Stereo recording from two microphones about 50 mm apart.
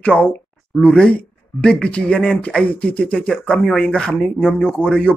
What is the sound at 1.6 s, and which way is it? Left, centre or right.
Speech, centre.